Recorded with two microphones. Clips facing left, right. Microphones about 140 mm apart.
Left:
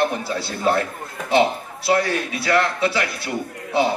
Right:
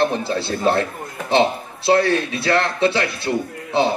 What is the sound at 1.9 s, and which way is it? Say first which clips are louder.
A man's voice: right 4 dB; 25° right (ahead or behind).